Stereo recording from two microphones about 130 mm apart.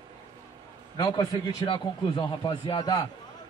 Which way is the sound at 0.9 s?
35° left (ahead or behind).